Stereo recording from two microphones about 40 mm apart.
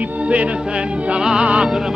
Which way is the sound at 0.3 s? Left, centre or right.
Right.